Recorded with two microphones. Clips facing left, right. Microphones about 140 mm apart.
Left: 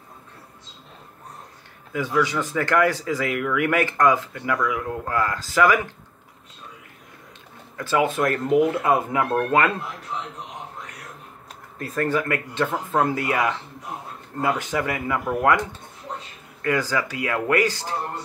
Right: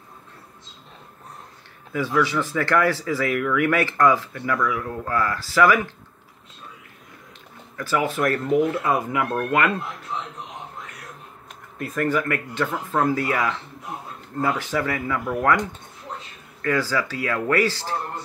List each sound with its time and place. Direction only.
2.2 s speech: 15° left (ahead or behind)
7.7 s speech: 20° left (ahead or behind)
12.0 s speech: 25° left (ahead or behind)
16.6 s speech: 15° left (ahead or behind)